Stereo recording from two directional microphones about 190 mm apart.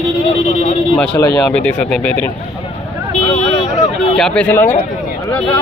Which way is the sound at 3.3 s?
35° left (ahead or behind).